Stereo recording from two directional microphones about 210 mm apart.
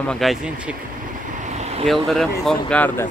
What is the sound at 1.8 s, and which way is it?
Speech, centre (ahead or behind).